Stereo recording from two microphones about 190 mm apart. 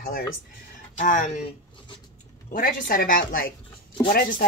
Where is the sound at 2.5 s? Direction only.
45° left (ahead or behind).